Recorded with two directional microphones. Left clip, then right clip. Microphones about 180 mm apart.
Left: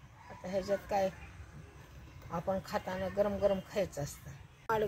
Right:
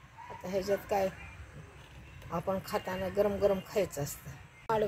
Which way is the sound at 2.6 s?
40° right (ahead or behind).